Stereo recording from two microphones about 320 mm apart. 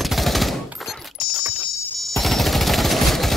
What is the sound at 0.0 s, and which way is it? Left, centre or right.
Machine gun, centre.